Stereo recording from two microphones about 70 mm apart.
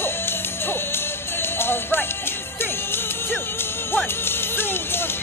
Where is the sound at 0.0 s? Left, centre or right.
Left.